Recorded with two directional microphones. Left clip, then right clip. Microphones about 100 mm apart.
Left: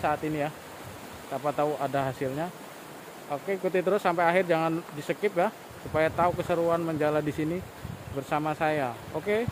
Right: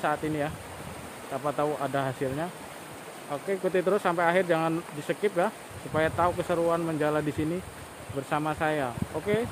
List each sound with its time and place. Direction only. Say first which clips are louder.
0.0 s speech: even; 5° left (ahead or behind)
8.3 s speech: left 1 dB; 10° left (ahead or behind)